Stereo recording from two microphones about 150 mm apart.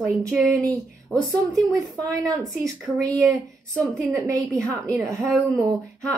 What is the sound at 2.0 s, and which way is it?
Speech, 25° right (ahead or behind).